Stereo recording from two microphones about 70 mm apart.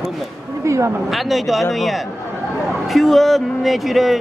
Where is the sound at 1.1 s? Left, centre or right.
Centre.